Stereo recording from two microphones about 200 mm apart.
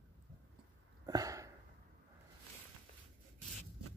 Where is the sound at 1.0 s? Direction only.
15° right (ahead or behind).